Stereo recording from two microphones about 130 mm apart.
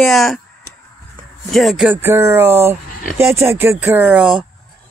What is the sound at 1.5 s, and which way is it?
Speech, centre (ahead or behind).